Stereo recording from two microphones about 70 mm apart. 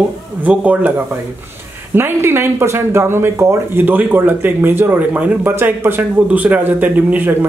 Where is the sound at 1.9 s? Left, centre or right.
Right.